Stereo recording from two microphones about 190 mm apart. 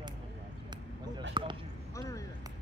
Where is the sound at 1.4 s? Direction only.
25° right (ahead or behind).